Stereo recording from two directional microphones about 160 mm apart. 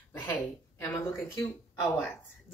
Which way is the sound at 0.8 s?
15° left (ahead or behind).